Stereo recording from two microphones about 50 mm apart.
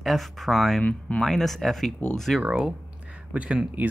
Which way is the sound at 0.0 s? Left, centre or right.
Centre.